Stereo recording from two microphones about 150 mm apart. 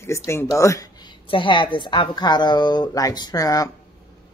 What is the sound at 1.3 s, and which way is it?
A woman's voice, 35° left (ahead or behind).